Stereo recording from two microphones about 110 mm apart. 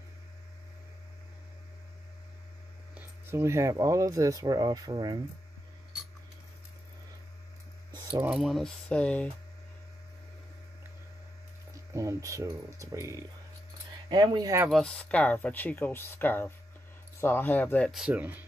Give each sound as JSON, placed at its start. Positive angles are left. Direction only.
{"t": 3.3, "sound": "speech", "side_deg": -25}
{"t": 8.3, "sound": "speech", "side_deg": -5}
{"t": 11.9, "sound": "speech", "side_deg": -30}
{"t": 14.0, "sound": "speech", "side_deg": -40}
{"t": 14.7, "sound": "speech", "side_deg": 10}
{"t": 17.8, "sound": "speech", "side_deg": -5}
{"t": 18.1, "sound": "speech", "side_deg": -15}